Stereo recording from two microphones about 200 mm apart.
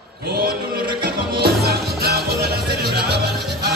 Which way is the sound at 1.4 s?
50° right (ahead or behind).